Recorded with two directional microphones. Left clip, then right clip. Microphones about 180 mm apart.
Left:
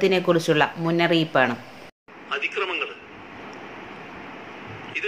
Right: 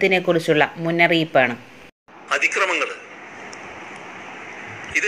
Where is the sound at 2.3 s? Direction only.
55° right (ahead or behind).